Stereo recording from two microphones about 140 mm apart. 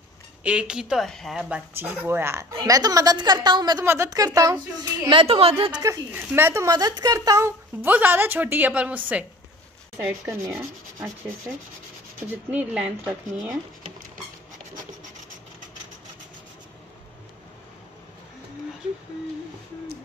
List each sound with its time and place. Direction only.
0.4 s speech: 10° right (ahead or behind)
1.8 s a woman's voice: 15° right (ahead or behind)
3.8 s a woman's voice: 20° right (ahead or behind)
5.0 s a woman's voice: 40° right (ahead or behind)
5.8 s speech: 20° right (ahead or behind)
10.2 s a woman's voice: 25° right (ahead or behind)
12.4 s speech: 10° right (ahead or behind)